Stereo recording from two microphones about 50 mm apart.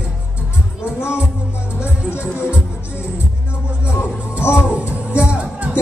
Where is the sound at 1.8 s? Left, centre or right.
Left.